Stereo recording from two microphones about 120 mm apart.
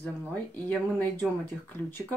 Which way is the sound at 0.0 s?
10° left (ahead or behind).